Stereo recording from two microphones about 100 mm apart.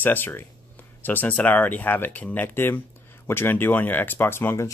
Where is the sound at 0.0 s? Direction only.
20° left (ahead or behind).